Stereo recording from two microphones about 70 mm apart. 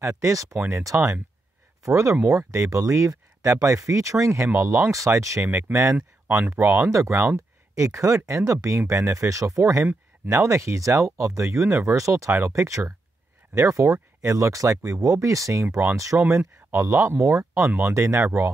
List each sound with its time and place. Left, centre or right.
0.0 s speech: right
0.6 s speech: right
0.8 s speech: right
16.2 s speech: right